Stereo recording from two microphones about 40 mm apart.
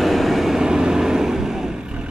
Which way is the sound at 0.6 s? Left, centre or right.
Right.